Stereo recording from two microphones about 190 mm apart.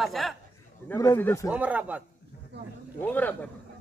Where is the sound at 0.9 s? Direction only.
15° left (ahead or behind).